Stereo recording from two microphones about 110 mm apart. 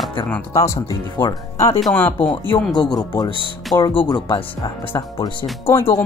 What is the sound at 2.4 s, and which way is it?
Speech, 40° left (ahead or behind).